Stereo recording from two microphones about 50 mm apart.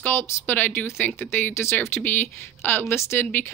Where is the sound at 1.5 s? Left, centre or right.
Left.